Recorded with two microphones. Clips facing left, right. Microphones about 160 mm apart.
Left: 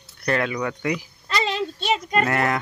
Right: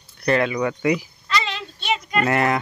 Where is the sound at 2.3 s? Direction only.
5° right (ahead or behind).